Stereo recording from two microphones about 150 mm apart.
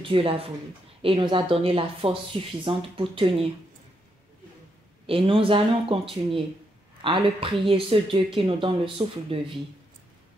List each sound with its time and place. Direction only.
0.0 s speech: 40° right (ahead or behind)
5.0 s speech: 35° right (ahead or behind)